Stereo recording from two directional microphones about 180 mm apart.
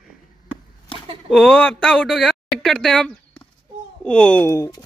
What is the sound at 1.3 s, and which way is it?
Speech, 5° left (ahead or behind).